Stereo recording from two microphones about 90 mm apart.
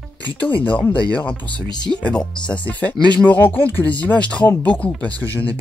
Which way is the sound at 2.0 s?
15° left (ahead or behind).